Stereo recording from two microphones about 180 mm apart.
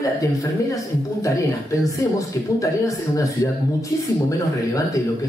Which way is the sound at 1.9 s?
20° left (ahead or behind).